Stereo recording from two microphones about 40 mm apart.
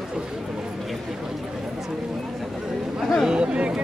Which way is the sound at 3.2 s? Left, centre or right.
Right.